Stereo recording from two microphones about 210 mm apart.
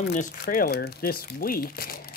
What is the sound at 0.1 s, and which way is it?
Speech, 40° left (ahead or behind).